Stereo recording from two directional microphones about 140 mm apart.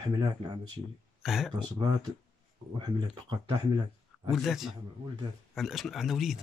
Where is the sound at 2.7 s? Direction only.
30° right (ahead or behind).